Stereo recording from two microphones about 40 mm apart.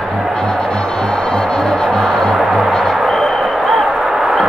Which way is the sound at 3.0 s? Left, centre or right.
Centre.